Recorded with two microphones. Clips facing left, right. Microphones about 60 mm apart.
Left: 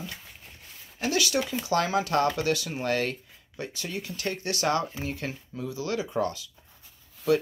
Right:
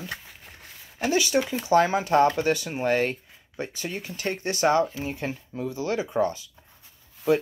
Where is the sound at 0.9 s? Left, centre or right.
Right.